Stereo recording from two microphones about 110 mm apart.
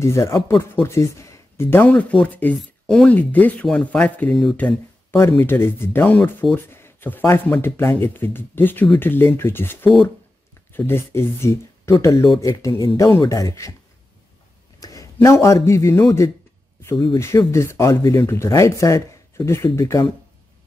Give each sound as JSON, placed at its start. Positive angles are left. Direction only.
{"t": 0.0, "sound": "speech", "side_deg": 25}
{"t": 1.9, "sound": "speech", "side_deg": 10}
{"t": 5.4, "sound": "speech", "side_deg": 20}
{"t": 14.8, "sound": "a sound", "side_deg": 30}
{"t": 15.2, "sound": "speech", "side_deg": 25}
{"t": 16.9, "sound": "speech", "side_deg": 45}
{"t": 17.5, "sound": "speech", "side_deg": 25}